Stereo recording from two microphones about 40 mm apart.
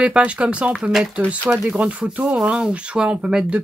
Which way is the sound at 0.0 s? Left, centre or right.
Right.